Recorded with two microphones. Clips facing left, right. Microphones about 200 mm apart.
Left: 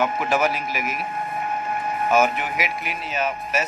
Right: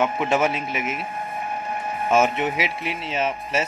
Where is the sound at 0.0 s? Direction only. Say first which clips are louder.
Right 1 dB; 25° right (ahead or behind).